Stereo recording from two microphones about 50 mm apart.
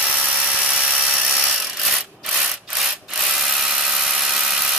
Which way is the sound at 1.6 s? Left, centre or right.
Centre.